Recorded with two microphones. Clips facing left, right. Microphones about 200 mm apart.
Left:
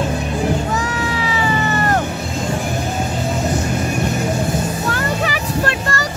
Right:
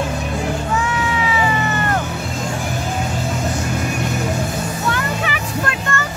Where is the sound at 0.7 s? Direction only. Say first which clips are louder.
Right 1 dB; 35° left (ahead or behind).